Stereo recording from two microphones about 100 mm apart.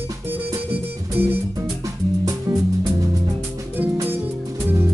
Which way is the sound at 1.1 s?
20° right (ahead or behind).